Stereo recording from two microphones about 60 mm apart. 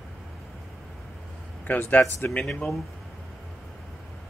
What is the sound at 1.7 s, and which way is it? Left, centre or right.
Speech, left.